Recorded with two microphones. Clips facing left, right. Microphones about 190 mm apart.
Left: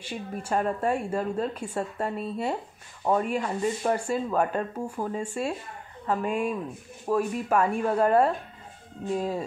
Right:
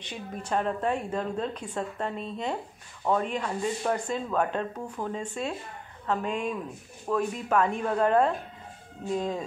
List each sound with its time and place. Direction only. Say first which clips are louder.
0.1 s speech: left 2 dB; 5° left (ahead or behind)